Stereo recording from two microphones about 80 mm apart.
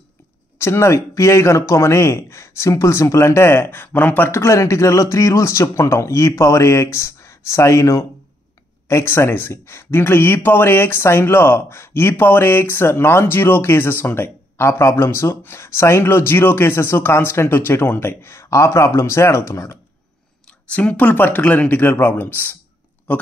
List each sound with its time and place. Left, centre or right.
0.6 s speech: left
20.7 s speech: centre